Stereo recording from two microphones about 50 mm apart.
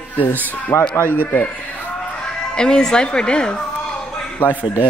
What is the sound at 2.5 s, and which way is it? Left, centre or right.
A woman's voice, centre.